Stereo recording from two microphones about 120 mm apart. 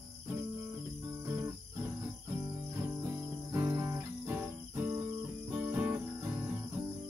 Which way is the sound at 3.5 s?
20° right (ahead or behind).